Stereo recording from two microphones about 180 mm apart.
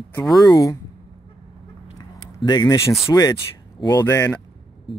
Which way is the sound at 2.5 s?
25° left (ahead or behind).